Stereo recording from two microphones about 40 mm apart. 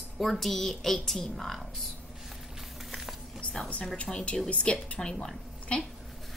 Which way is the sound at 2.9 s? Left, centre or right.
Centre.